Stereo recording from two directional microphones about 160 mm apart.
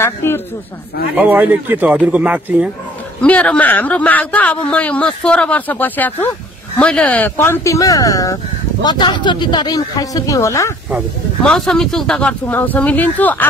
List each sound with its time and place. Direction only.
0.0 s a man's voice: 15° left (ahead or behind)
1.1 s speech: 10° right (ahead or behind)
3.2 s speech: 5° left (ahead or behind)
10.9 s speech: centre (ahead or behind)